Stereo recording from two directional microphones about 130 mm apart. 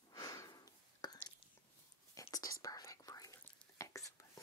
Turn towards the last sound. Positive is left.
turn(degrees=25)  # may be behind; listen again after turning